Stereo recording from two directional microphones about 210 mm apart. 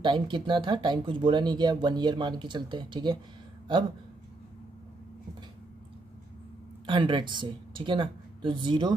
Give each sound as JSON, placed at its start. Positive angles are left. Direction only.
{"t": 0.0, "sound": "speech", "side_deg": -20}
{"t": 6.9, "sound": "speech", "side_deg": -25}